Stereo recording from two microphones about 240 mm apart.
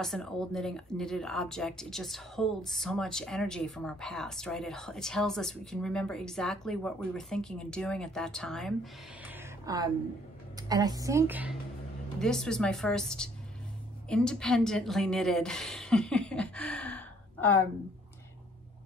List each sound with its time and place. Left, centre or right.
0.0 s speech: centre
9.2 s a sound: centre
10.7 s a woman's voice: centre